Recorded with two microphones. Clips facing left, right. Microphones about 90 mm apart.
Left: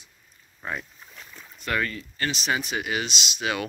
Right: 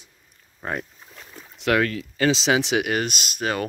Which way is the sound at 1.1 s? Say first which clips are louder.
Right 3 dB; 30° right (ahead or behind).